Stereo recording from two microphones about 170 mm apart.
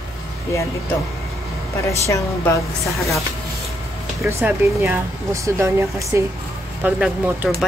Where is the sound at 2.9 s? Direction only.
Centre (ahead or behind).